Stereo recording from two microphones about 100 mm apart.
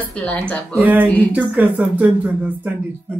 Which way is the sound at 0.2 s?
10° left (ahead or behind).